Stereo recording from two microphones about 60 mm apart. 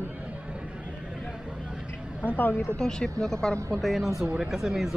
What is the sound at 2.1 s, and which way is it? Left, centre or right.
Speech, left.